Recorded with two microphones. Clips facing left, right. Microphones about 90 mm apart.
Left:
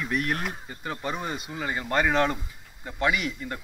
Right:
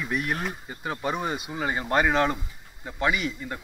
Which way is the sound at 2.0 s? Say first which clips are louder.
Right 1 dB; 10° right (ahead or behind).